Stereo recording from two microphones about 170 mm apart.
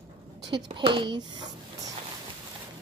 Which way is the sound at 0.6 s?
30° right (ahead or behind).